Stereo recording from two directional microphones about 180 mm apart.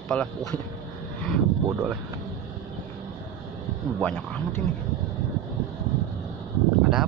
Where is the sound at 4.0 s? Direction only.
10° left (ahead or behind).